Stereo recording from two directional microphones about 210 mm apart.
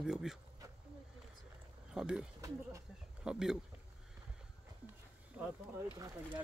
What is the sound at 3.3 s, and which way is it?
Speech, 5° right (ahead or behind).